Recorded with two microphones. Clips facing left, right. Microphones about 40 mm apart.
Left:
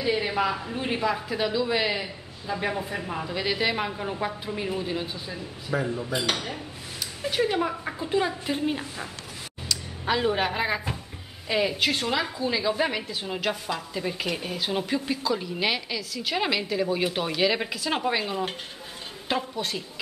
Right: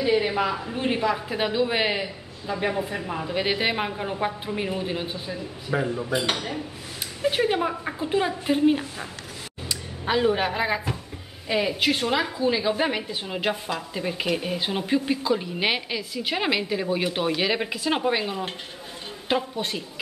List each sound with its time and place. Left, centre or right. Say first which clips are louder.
0.0 s a man's voice: right 3 dB; centre
1.3 s speech: right 1 dB; right
2.0 s a man's voice: right 3 dB; centre
3.3 s a man's voice: right 2 dB; right; by 6.6 s centre
7.2 s speech: right 2 dB; centre
10.1 s a man's voice: right 3 dB; centre